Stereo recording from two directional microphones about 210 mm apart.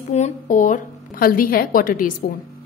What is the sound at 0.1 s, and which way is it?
A woman's voice, 35° left (ahead or behind).